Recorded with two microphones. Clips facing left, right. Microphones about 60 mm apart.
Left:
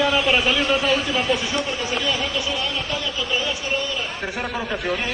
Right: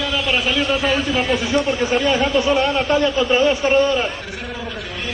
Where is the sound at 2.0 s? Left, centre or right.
Right.